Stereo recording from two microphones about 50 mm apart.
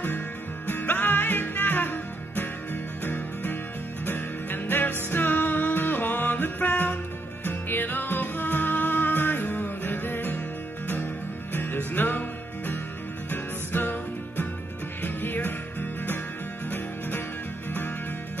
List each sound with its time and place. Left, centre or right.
0.7 s music: left
11.5 s music: left